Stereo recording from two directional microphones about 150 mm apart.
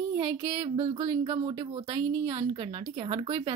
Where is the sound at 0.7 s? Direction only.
30° right (ahead or behind).